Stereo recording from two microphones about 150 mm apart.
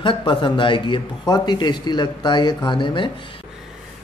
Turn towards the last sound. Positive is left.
turn(degrees=35)  # may be behind; listen again after turning